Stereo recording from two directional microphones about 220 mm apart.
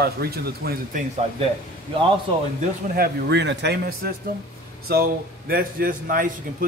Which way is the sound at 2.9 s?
45° right (ahead or behind).